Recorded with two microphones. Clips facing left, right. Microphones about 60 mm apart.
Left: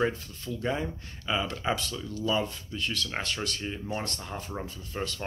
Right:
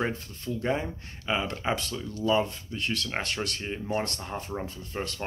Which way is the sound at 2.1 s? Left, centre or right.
Right.